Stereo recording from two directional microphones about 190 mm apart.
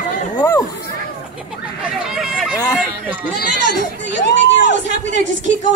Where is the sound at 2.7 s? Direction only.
10° right (ahead or behind).